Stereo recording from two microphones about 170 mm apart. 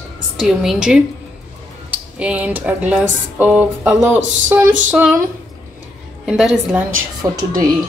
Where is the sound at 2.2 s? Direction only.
10° right (ahead or behind).